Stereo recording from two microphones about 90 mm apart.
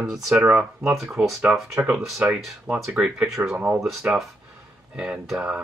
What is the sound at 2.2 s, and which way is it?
Speech, 20° right (ahead or behind).